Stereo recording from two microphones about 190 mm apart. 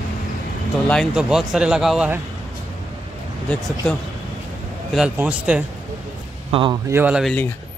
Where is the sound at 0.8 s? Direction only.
Centre (ahead or behind).